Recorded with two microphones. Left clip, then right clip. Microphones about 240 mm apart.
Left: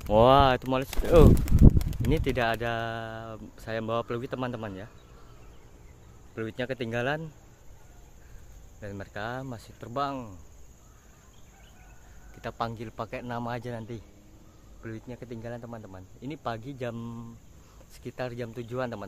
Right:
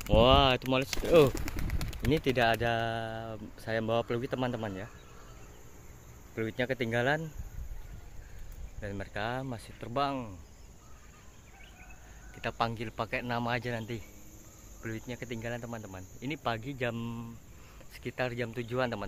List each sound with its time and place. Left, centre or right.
0.1 s speech: centre
1.3 s speech: left
1.8 s bird: left
2.0 s speech: centre
6.3 s speech: centre
8.8 s speech: centre
12.4 s speech: centre